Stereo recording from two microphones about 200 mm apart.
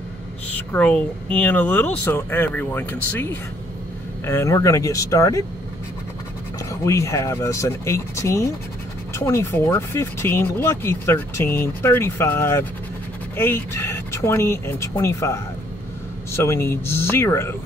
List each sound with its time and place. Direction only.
0.6 s speech: 5° left (ahead or behind)
4.3 s speech: 15° left (ahead or behind)
6.7 s speech: 15° left (ahead or behind)